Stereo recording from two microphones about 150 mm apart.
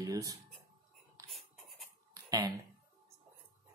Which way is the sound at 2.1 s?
25° right (ahead or behind).